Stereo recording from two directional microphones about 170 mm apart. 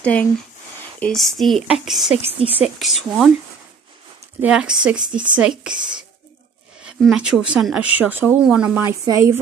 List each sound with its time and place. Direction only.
0.0 s speech: 10° left (ahead or behind)
2.3 s speech: 35° right (ahead or behind)
2.6 s speech: centre (ahead or behind)
4.4 s speech: 5° right (ahead or behind)
6.8 s speech: 5° right (ahead or behind)
8.8 s speech: 20° right (ahead or behind)